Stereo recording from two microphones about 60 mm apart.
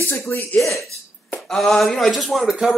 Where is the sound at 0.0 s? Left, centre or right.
Left.